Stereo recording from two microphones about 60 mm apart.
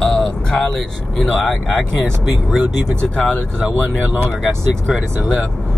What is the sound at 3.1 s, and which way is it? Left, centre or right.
Speech, centre.